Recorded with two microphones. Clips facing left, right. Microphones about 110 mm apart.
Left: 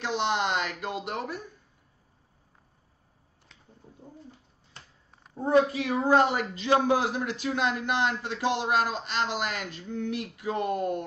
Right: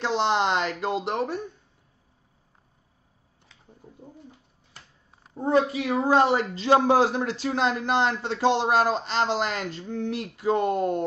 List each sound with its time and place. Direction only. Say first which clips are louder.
0.0 s speech: right 4 dB; 30° right (ahead or behind)
5.3 s a woman's voice: even; 20° right (ahead or behind)